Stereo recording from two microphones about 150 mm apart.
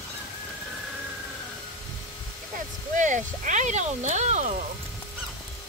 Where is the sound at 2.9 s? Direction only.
55° right (ahead or behind).